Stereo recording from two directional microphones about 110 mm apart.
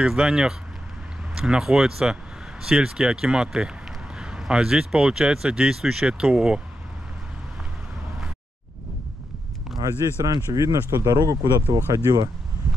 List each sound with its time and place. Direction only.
0.0 s speech: 5° right (ahead or behind)
9.8 s speech: 35° right (ahead or behind)